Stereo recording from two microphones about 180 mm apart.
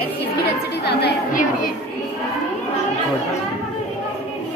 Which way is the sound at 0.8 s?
65° left (ahead or behind).